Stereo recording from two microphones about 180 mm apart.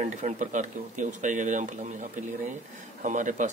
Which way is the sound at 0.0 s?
45° right (ahead or behind).